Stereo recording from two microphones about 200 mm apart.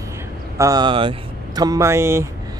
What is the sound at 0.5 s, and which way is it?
Speech, 15° right (ahead or behind).